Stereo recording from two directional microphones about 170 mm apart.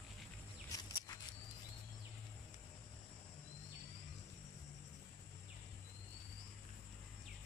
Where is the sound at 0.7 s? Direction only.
20° left (ahead or behind).